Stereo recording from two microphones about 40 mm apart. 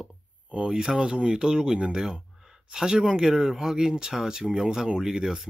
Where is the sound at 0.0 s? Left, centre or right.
Right.